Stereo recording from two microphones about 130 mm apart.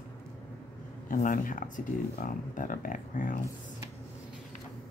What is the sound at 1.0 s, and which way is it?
Speech, 90° left.